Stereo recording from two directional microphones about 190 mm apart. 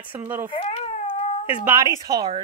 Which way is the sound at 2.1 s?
20° right (ahead or behind).